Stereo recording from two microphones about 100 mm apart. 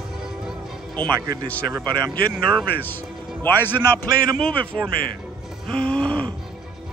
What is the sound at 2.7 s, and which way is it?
Speech, 20° left (ahead or behind).